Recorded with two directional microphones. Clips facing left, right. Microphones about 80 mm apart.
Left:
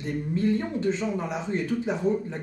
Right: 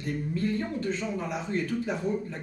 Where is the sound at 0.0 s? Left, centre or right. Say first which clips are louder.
Left 4 dB; left.